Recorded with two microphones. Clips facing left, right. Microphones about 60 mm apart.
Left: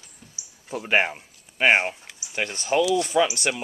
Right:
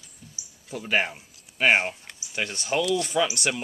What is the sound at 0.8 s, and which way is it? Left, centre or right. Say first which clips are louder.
Speech: left 3 dB; left.